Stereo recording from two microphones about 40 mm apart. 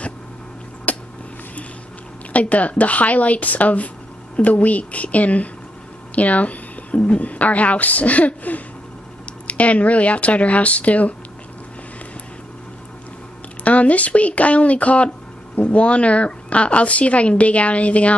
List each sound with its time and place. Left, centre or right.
0.9 s a sound: left
2.3 s speech: left
13.7 s speech: left